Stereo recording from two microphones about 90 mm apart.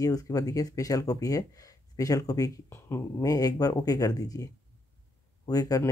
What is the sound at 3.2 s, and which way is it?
Speech, 45° left (ahead or behind).